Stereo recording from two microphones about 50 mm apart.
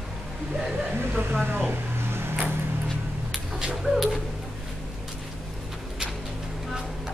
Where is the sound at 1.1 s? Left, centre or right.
Right.